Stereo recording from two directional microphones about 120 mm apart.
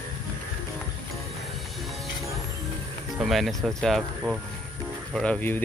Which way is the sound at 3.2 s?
Centre (ahead or behind).